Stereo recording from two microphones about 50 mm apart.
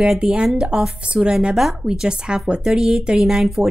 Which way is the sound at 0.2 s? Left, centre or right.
Centre.